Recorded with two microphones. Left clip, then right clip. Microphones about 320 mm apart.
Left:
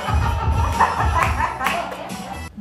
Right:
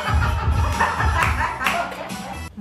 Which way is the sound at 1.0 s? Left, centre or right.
Centre.